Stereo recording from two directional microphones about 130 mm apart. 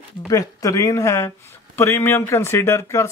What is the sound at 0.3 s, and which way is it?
Speech, 25° left (ahead or behind).